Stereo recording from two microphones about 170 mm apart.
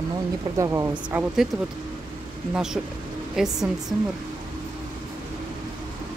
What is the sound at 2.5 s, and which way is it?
Speech, 5° right (ahead or behind).